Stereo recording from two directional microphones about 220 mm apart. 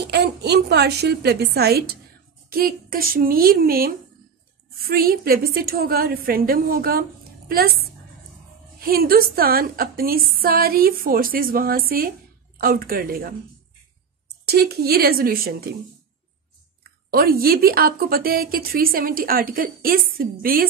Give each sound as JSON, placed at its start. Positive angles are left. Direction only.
{"t": 0.0, "sound": "a woman's voice", "side_deg": -50}
{"t": 8.7, "sound": "a woman's voice", "side_deg": -45}
{"t": 14.4, "sound": "a woman's voice", "side_deg": -45}
{"t": 17.1, "sound": "a woman's voice", "side_deg": -45}